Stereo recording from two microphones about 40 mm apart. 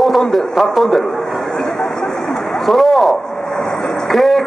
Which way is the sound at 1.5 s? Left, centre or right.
Centre.